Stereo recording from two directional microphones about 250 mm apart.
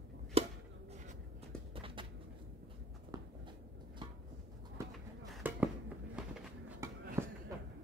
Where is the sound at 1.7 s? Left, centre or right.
Right.